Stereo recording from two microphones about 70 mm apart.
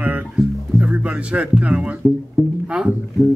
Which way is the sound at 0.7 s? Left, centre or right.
Centre.